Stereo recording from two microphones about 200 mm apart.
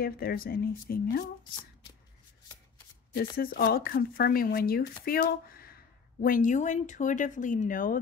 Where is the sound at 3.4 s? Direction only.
50° left (ahead or behind).